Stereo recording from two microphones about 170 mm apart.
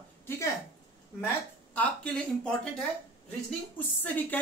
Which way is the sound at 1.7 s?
10° left (ahead or behind).